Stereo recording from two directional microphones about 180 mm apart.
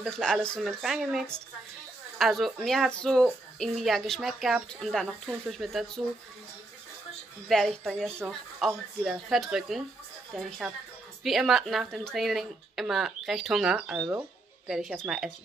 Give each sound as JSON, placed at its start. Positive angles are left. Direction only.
{"t": 0.0, "sound": "speech", "side_deg": 5}
{"t": 7.4, "sound": "speech", "side_deg": 0}